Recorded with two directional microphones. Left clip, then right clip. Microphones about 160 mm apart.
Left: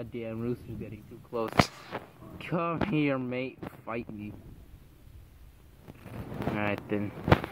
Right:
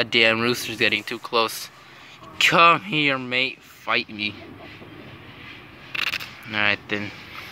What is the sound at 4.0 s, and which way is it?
Speech, 85° right.